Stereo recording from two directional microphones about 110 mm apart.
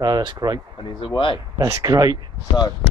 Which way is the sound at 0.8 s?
50° left (ahead or behind).